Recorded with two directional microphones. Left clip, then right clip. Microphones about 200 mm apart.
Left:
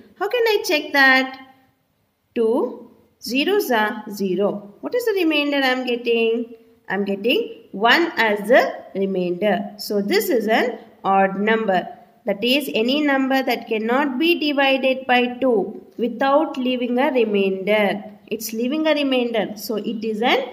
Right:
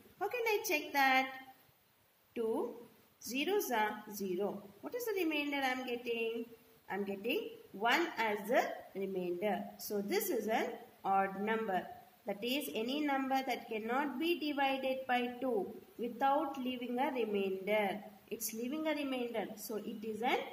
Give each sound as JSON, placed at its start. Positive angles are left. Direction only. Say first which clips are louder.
{"t": 0.2, "sound": "a woman's voice", "louder": "left 16 dB", "side_deg": 50}
{"t": 2.3, "sound": "a woman's voice", "louder": "left 18 dB", "side_deg": 50}